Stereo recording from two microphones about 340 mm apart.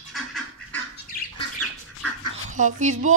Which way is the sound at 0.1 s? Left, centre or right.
Centre.